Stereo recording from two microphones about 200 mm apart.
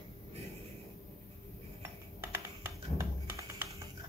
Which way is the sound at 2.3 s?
15° right (ahead or behind).